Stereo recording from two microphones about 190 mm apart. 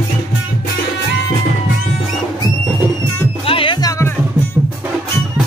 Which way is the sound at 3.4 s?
30° left (ahead or behind).